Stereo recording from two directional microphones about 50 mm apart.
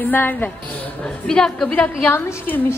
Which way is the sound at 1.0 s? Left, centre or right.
Centre.